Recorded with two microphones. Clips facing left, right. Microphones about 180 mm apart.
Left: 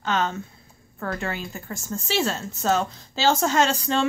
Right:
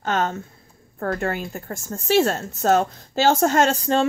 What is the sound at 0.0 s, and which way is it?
Speech, 50° right (ahead or behind).